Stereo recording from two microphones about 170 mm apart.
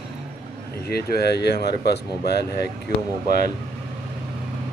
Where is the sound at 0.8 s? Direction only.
70° left (ahead or behind).